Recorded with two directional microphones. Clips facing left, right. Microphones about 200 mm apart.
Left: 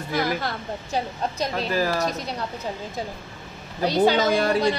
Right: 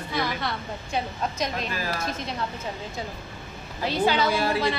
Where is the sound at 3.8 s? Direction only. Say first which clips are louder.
Left 4 dB; 40° left (ahead or behind).